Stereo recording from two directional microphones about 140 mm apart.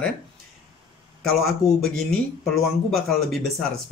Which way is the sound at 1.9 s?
Centre (ahead or behind).